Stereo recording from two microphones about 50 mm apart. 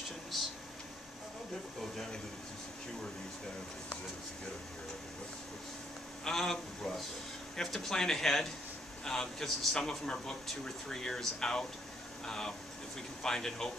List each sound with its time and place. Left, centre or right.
6.2 s speech: centre
9.8 s speech: centre